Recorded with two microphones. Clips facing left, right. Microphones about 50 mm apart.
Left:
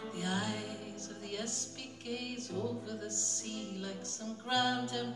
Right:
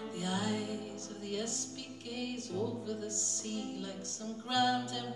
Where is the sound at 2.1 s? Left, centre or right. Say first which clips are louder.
Right 1 dB; left.